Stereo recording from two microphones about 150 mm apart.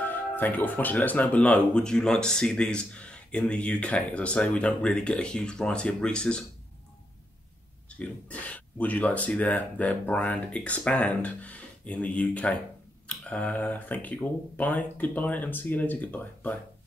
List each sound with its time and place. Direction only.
0.0 s speech: 10° left (ahead or behind)
8.0 s speech: 10° left (ahead or behind)